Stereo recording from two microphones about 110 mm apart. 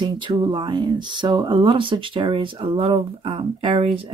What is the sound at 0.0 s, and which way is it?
Speech, 50° right (ahead or behind).